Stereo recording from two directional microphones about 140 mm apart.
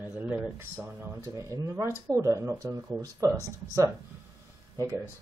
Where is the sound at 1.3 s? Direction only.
20° right (ahead or behind).